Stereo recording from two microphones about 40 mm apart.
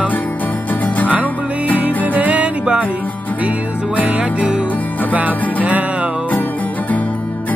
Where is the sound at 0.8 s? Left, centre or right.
Left.